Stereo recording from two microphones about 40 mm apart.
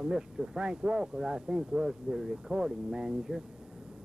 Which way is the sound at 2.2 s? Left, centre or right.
Centre.